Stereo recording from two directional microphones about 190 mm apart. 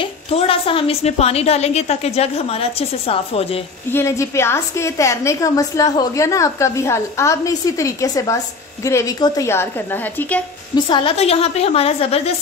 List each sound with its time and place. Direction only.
0.0 s a woman's voice: 30° left (ahead or behind)
3.9 s a woman's voice: 15° left (ahead or behind)
10.9 s a woman's voice: 25° left (ahead or behind)